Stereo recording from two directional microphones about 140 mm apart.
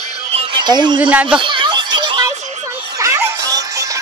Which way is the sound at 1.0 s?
10° right (ahead or behind).